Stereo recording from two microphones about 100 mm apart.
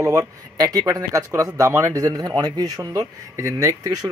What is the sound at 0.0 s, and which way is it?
Speech, 35° right (ahead or behind).